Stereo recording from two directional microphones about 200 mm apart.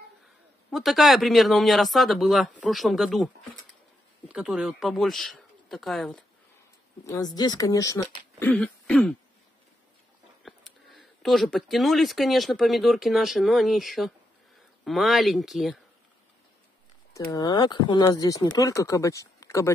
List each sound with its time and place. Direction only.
0.7 s speech: centre (ahead or behind)
4.3 s speech: 5° right (ahead or behind)
7.1 s speech: 20° left (ahead or behind)
8.5 s speech: 5° left (ahead or behind)
10.4 s speech: centre (ahead or behind)
17.3 s speech: 20° left (ahead or behind)